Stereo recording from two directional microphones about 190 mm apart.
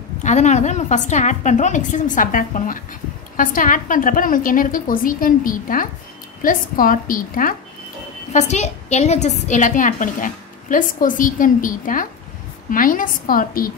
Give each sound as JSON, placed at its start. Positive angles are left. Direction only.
{"t": 0.2, "sound": "a woman's voice", "side_deg": 40}